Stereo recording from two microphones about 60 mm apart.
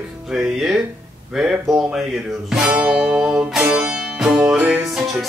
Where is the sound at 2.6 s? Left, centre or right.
Centre.